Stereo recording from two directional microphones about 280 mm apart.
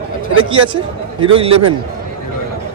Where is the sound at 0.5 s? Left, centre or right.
Centre.